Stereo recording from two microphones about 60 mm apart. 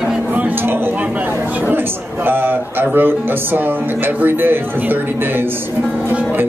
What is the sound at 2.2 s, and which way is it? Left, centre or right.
Speech, right.